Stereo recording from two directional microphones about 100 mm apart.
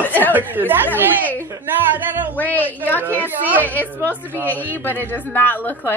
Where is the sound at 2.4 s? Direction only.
15° left (ahead or behind).